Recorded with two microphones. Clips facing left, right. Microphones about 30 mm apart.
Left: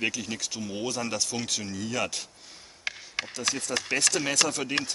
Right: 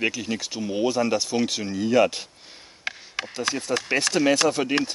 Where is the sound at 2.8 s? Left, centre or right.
Centre.